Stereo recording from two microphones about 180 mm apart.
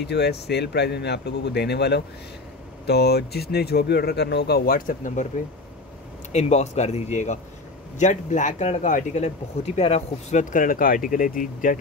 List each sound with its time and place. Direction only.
0.0 s speech: 65° left (ahead or behind); by 5.3 s 45° left (ahead or behind)
6.3 s speech: 40° left (ahead or behind)